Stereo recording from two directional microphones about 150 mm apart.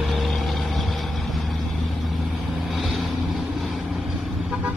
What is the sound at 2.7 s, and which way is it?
Vehicle, centre (ahead or behind).